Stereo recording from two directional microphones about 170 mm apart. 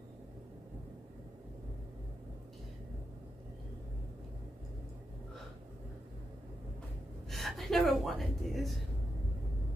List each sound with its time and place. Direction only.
7.2 s gasp: centre (ahead or behind)